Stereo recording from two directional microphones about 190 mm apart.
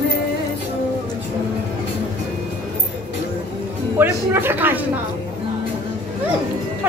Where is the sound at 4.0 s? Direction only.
10° right (ahead or behind).